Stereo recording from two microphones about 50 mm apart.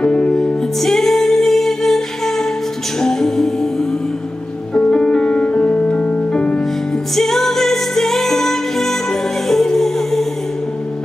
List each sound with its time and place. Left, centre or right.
0.0 s music: centre
0.7 s music: centre
4.7 s music: left
7.2 s music: centre